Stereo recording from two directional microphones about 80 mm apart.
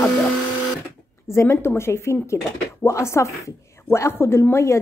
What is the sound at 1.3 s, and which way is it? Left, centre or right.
Speech, left.